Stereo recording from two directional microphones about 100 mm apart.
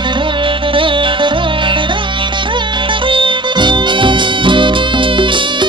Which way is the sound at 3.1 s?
55° right (ahead or behind).